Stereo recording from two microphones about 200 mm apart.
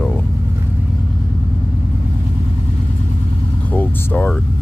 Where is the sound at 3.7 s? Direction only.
10° left (ahead or behind).